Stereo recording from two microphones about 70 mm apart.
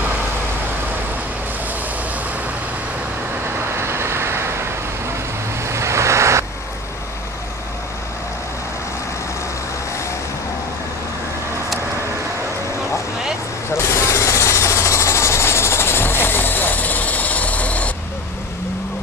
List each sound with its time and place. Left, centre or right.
3.8 s vehicle: right
5.7 s waves: right
13.7 s vehicle: left; by 17.9 s centre